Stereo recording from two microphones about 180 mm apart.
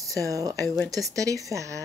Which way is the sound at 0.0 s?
20° right (ahead or behind).